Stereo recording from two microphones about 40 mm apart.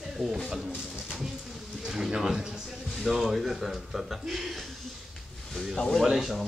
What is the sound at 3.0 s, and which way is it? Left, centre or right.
Speech, centre.